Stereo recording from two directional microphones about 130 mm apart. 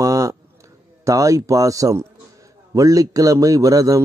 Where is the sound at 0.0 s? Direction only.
25° right (ahead or behind).